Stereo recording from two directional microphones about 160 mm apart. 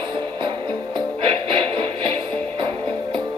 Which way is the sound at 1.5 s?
30° right (ahead or behind).